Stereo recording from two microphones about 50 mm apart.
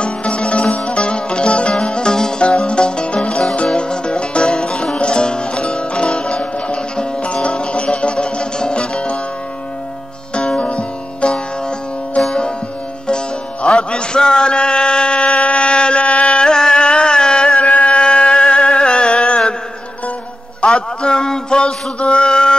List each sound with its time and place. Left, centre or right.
0.0 s music: left
10.3 s music: centre
13.0 s music: centre
20.6 s a sound: centre